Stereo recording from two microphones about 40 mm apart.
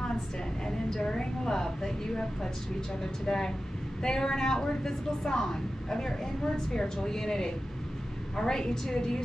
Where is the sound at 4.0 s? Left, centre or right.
Centre.